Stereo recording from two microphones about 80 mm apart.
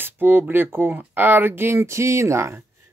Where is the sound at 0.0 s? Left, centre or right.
Right.